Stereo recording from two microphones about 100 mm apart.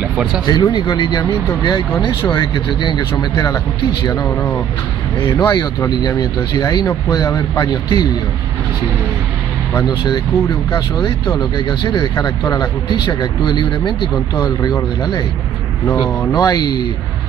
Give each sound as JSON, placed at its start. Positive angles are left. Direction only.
{"t": 0.5, "sound": "speech", "side_deg": 45}
{"t": 4.3, "sound": "speech", "side_deg": 20}
{"t": 5.6, "sound": "speech", "side_deg": 40}
{"t": 9.8, "sound": "speech", "side_deg": 45}
{"t": 14.3, "sound": "speech", "side_deg": 30}
{"t": 16.3, "sound": "speech", "side_deg": 40}